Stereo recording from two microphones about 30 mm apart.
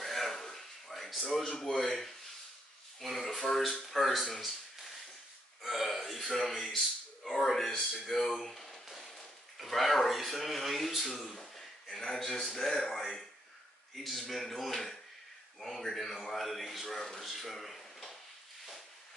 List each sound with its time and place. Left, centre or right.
0.0 s a sound: centre
1.5 s speech: centre
3.3 s speech: centre
3.9 s speech: centre
5.6 s speech: centre
8.8 s a sound: centre
9.6 s speech: centre
11.3 s a sound: centre
12.7 s speech: centre
13.9 s speech: centre
17.3 s drawer open or close: centre